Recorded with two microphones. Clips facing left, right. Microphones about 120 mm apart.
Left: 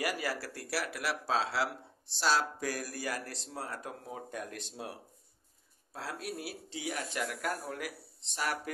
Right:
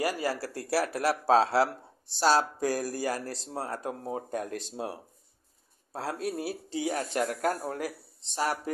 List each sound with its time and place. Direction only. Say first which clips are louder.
0.0 s speech: right 5 dB; 30° right (ahead or behind)